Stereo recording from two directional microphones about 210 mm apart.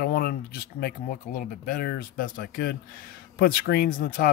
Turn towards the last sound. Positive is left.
turn(degrees=45)  # may be behind; listen again after turning